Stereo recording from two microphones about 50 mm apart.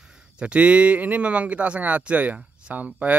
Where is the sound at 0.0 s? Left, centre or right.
Centre.